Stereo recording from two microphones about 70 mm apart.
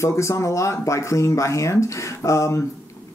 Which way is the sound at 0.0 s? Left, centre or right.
Left.